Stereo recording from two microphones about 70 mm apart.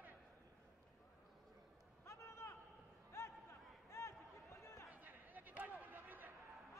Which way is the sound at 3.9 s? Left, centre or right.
Left.